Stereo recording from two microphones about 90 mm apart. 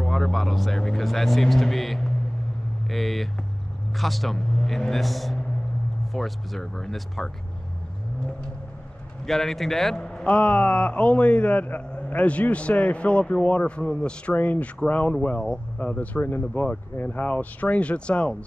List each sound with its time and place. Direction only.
0.0 s speech: 5° left (ahead or behind)
9.2 s a man's voice: 5° left (ahead or behind)